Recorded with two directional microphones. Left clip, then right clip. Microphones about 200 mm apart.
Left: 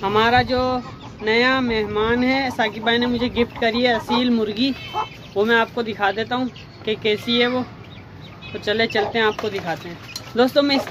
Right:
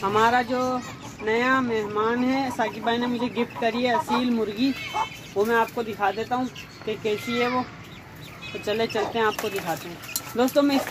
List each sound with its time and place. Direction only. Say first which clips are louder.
0.0 s speech: left 4 dB; 15° left (ahead or behind)
8.6 s speech: left 5 dB; 15° left (ahead or behind)
10.3 s speech: left 4 dB; 10° left (ahead or behind)